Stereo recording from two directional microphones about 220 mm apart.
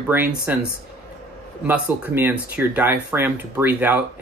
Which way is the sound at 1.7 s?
10° right (ahead or behind).